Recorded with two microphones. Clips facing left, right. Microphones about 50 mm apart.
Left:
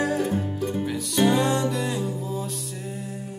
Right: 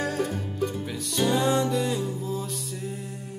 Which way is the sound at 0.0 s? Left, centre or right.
Centre.